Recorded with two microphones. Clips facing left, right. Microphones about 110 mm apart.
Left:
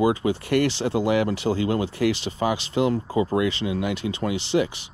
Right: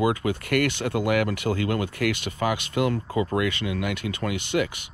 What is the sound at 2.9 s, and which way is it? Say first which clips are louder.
Speech: left 3 dB; 25° left (ahead or behind).